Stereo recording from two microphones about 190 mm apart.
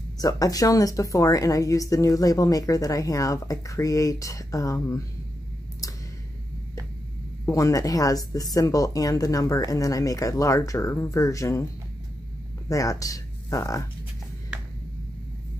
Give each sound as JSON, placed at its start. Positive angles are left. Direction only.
{"t": 0.2, "sound": "speech", "side_deg": 20}
{"t": 7.4, "sound": "speech", "side_deg": 15}
{"t": 12.6, "sound": "speech", "side_deg": 15}